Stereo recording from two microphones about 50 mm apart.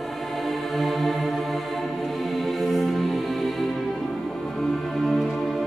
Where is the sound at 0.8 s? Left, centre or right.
Centre.